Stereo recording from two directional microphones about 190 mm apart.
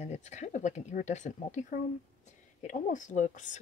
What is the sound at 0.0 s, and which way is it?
Speech, 35° left (ahead or behind).